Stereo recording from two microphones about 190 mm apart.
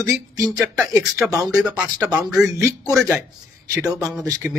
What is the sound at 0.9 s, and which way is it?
Speech, 15° right (ahead or behind).